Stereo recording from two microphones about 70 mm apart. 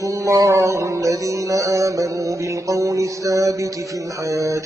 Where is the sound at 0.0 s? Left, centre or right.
Right.